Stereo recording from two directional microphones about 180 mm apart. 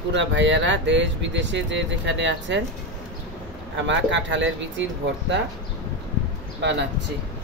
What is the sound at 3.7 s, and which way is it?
Speech, 85° right.